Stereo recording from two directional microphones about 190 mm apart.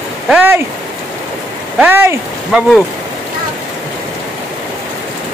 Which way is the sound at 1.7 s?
10° right (ahead or behind).